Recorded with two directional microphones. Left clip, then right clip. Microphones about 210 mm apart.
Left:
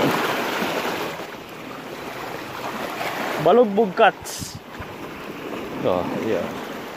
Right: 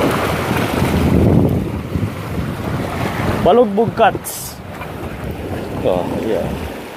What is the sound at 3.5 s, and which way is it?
Speech, 5° left (ahead or behind).